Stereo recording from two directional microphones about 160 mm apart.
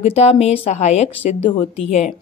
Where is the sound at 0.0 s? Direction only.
40° left (ahead or behind).